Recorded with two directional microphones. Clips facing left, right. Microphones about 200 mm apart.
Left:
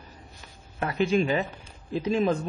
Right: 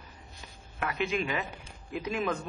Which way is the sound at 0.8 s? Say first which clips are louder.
Left 7 dB; 35° left (ahead or behind).